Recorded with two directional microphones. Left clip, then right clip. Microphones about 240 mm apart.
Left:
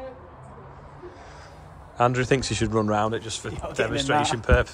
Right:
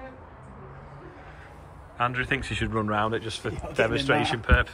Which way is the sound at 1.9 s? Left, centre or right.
Left.